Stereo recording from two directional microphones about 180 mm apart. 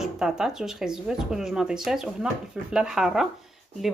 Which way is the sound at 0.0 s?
5° right (ahead or behind).